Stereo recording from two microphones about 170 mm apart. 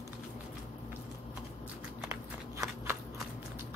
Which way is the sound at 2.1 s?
15° right (ahead or behind).